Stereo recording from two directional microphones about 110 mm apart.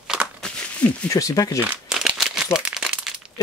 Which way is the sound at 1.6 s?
5° right (ahead or behind).